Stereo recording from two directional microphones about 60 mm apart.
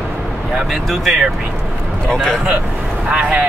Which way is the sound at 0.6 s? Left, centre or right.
Centre.